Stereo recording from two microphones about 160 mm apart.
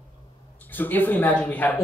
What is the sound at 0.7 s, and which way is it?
Speech, 10° left (ahead or behind).